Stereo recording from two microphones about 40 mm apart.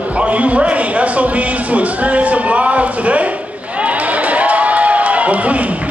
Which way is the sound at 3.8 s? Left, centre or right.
Right.